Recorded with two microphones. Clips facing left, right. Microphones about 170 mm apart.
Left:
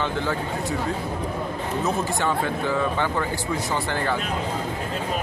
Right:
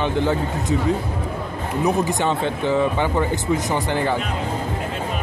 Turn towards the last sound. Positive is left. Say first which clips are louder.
# right 4 dB
turn(degrees=-15)  # may be behind; listen again after turning